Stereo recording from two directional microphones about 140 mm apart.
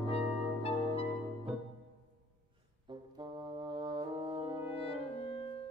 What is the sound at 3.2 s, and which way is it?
Brass instrument, 35° right (ahead or behind).